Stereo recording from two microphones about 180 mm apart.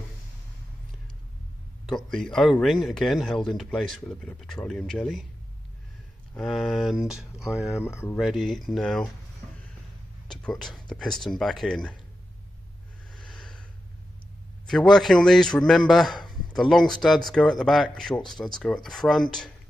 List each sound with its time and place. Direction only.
1.9 s speech: 5° left (ahead or behind)
6.3 s speech: centre (ahead or behind)
7.8 s speech: 15° left (ahead or behind)
8.2 s speech: centre (ahead or behind)
10.3 s speech: centre (ahead or behind)
13.1 s snort: centre (ahead or behind)
14.9 s speech: centre (ahead or behind)
16.2 s a sound: 25° left (ahead or behind)
16.5 s speech: 5° left (ahead or behind)